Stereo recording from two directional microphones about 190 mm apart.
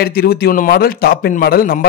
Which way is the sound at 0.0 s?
55° left (ahead or behind).